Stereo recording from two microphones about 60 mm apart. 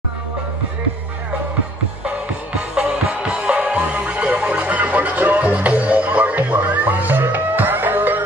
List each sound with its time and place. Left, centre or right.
2.7 s music: centre; by 8.2 s right